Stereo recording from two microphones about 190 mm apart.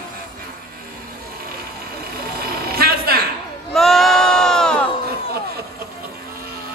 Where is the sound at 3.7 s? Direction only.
Centre (ahead or behind).